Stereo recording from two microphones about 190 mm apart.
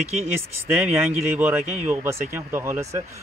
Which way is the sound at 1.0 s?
10° right (ahead or behind).